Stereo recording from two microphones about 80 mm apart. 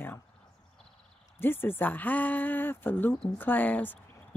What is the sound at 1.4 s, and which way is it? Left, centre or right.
Speech, left.